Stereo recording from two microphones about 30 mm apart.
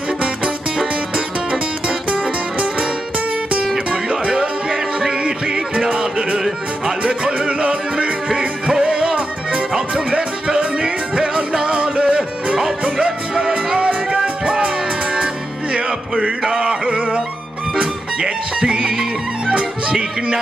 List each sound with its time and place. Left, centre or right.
0.2 s music: right
2.0 s music: right
3.7 s music: centre
5.9 s music: right
8.8 s music: right
11.6 s music: right
13.7 s music: right
16.4 s a sound: centre
17.7 s music: right
19.9 s music: right